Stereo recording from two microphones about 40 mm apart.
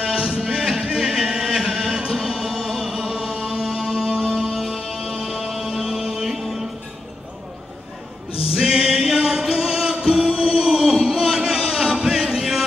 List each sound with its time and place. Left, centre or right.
0.0 s music: right
4.1 s music: right
4.6 s music: centre
8.5 s music: centre